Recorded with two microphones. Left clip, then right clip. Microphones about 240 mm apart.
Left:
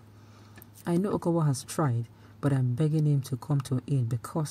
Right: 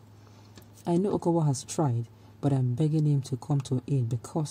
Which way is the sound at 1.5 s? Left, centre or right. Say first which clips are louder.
Right 1 dB; centre.